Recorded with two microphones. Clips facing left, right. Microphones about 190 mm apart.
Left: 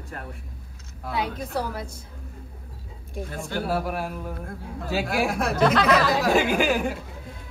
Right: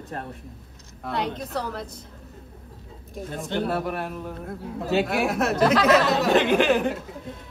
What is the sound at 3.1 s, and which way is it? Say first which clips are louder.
A man's voice: right 2 dB; centre (ahead or behind).